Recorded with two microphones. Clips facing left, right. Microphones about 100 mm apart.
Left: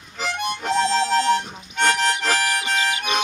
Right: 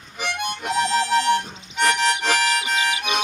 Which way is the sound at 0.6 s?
10° right (ahead or behind).